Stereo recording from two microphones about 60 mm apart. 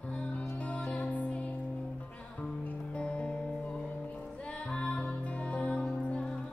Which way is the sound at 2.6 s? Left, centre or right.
Left.